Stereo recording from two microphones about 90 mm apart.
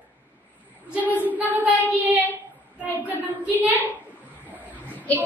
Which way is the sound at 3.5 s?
20° right (ahead or behind).